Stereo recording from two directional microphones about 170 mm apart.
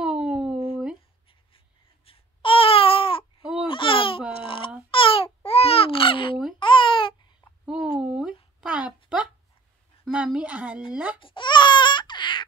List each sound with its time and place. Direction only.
0.0 s a sound: 5° right (ahead or behind)
2.0 s babbling: 35° left (ahead or behind)
4.4 s baby cry: 30° left (ahead or behind)
4.9 s babbling: 30° left (ahead or behind)
7.6 s a sound: 5° right (ahead or behind)
10.9 s baby cry: 10° right (ahead or behind)
11.1 s baby cry: 30° left (ahead or behind)